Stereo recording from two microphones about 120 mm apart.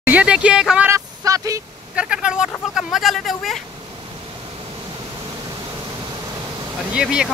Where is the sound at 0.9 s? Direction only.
30° right (ahead or behind).